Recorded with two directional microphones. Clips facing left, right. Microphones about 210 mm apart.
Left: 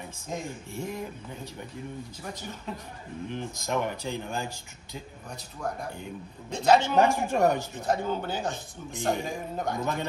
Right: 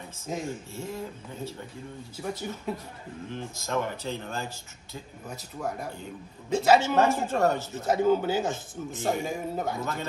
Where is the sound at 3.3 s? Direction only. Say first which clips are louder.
Left 2 dB; 15° left (ahead or behind).